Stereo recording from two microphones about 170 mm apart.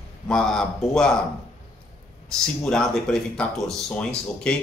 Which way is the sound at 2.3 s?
5° left (ahead or behind).